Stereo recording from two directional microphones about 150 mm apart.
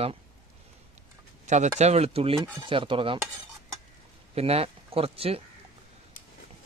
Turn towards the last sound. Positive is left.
turn(degrees=-40)  # may be behind; listen again after turning